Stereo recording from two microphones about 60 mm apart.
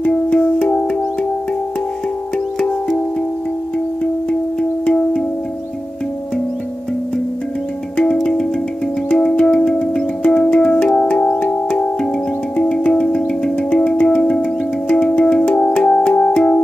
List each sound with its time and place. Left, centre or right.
0.1 s music: centre
4.0 s music: centre
8.0 s music: centre
12.5 s music: centre